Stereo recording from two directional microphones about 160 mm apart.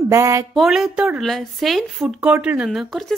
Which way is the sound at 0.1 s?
20° right (ahead or behind).